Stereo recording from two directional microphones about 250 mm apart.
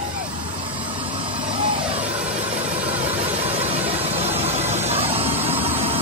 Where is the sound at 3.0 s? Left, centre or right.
Right.